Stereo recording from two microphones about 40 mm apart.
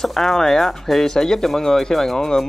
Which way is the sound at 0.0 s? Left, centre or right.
Centre.